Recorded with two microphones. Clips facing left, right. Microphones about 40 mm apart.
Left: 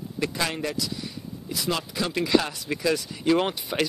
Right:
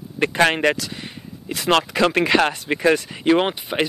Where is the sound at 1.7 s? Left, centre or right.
Right.